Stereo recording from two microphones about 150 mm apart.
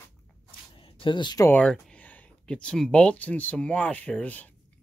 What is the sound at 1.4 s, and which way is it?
Speech, 10° left (ahead or behind).